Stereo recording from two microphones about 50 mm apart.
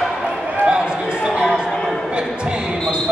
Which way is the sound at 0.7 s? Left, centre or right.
Centre.